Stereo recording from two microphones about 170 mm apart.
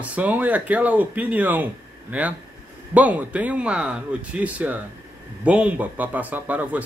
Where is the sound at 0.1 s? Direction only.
10° right (ahead or behind).